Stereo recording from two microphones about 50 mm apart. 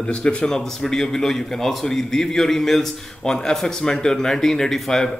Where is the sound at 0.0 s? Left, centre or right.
Left.